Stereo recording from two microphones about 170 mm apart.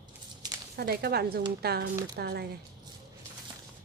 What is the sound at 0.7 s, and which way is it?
Speech, 65° right (ahead or behind).